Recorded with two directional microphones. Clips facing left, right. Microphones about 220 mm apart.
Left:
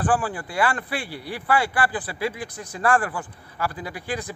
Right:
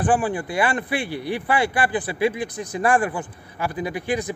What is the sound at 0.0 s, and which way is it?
Speech, 20° right (ahead or behind).